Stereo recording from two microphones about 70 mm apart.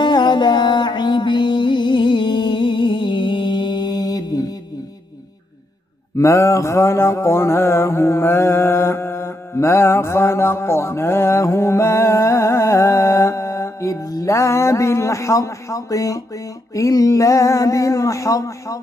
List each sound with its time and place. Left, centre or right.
0.0 s music: left
6.1 s mantra: left
14.2 s speech: left